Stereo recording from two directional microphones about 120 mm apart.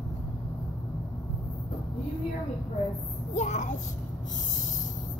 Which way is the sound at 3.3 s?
90° left.